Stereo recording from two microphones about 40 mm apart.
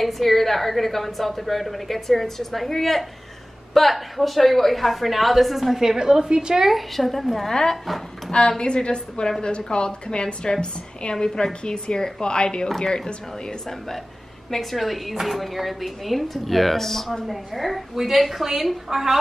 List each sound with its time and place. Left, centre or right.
0.0 s speech: centre
7.0 s speech: centre
8.3 s a woman's voice: left; by 18.8 s centre